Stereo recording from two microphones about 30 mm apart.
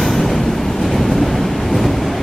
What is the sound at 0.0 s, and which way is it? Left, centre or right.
Train, centre.